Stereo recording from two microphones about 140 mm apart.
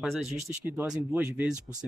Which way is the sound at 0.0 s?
Centre (ahead or behind).